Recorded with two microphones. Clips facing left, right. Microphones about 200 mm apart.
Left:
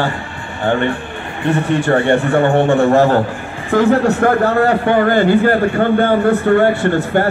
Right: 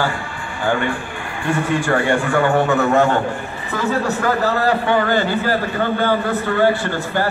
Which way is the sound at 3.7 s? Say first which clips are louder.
Left 8 dB; 55° left (ahead or behind).